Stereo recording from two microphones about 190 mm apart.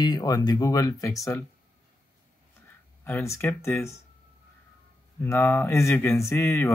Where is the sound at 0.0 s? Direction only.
20° left (ahead or behind).